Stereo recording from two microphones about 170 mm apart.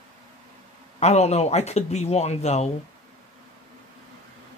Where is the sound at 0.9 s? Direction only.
40° left (ahead or behind).